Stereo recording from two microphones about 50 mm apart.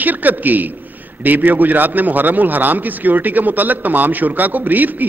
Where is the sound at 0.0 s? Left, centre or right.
Right.